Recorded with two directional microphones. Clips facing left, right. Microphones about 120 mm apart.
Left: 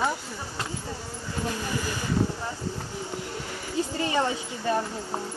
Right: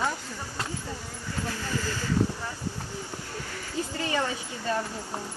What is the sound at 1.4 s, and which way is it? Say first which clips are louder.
Speech: left 2 dB; 20° left (ahead or behind).